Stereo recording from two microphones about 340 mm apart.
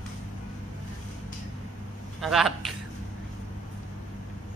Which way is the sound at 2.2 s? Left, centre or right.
Centre.